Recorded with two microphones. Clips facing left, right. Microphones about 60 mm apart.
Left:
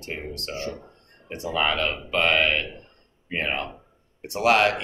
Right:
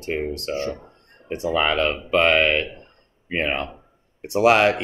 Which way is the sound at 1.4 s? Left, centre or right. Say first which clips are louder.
Right 4 dB; right.